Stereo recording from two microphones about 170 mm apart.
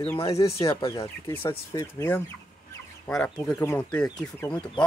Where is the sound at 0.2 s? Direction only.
20° left (ahead or behind).